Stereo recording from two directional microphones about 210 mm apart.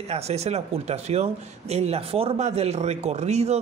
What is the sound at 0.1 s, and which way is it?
A man's voice, 30° right (ahead or behind).